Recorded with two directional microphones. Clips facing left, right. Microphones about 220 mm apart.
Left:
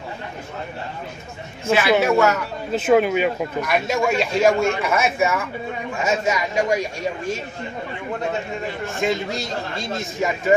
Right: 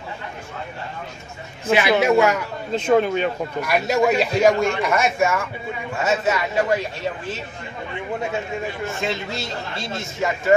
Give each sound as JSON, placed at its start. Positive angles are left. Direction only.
{"t": 1.7, "sound": "a man's voice", "side_deg": -15}
{"t": 2.7, "sound": "a man's voice", "side_deg": 5}
{"t": 9.0, "sound": "speech", "side_deg": 15}